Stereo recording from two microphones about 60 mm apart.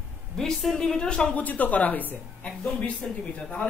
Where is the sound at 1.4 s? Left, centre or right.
Left.